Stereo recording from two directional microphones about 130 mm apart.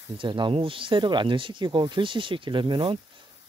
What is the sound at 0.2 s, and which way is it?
Speech, 40° right (ahead or behind).